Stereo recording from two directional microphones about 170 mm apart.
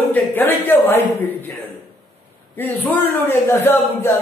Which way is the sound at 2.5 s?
10° left (ahead or behind).